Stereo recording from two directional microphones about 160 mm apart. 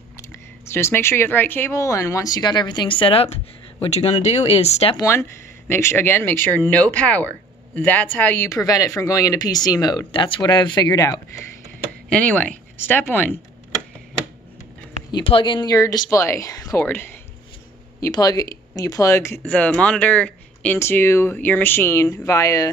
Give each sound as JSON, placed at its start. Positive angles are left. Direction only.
{"t": 0.2, "sound": "speech", "side_deg": 15}
{"t": 4.9, "sound": "speech", "side_deg": 15}
{"t": 12.1, "sound": "speech", "side_deg": 10}
{"t": 15.0, "sound": "speech", "side_deg": 30}
{"t": 18.0, "sound": "speech", "side_deg": 25}
{"t": 19.4, "sound": "speech", "side_deg": 10}